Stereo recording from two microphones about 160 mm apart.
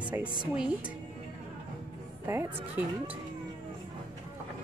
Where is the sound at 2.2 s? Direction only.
15° right (ahead or behind).